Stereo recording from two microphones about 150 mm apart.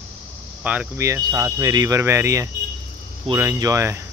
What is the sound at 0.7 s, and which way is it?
Speech, 15° right (ahead or behind).